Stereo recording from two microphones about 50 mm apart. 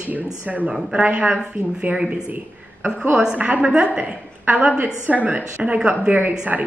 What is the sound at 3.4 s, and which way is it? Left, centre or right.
A woman's voice, right.